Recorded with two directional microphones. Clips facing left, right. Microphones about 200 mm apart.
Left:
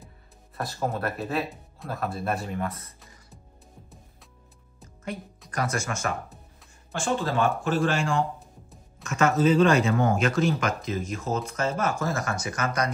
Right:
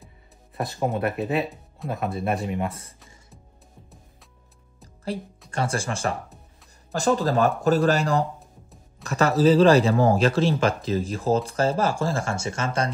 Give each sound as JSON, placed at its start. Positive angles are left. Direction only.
{"t": 1.1, "sound": "speech", "side_deg": 0}
{"t": 2.2, "sound": "speech", "side_deg": -20}
{"t": 4.8, "sound": "music", "side_deg": -35}
{"t": 5.5, "sound": "speech", "side_deg": -30}